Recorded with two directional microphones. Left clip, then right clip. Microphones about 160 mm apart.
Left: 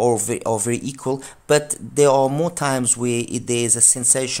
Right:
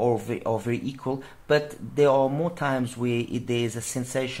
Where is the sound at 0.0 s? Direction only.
45° left (ahead or behind).